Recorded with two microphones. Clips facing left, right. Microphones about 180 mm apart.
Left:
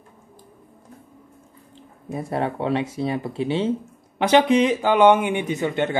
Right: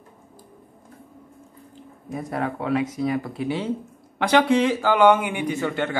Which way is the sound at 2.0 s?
25° left (ahead or behind).